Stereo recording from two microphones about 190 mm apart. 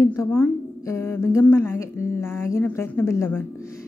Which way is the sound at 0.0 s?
15° left (ahead or behind).